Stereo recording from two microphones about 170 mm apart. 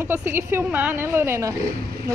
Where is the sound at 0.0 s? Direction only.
15° right (ahead or behind).